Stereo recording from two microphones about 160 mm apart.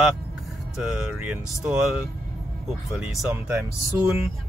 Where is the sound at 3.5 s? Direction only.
15° right (ahead or behind).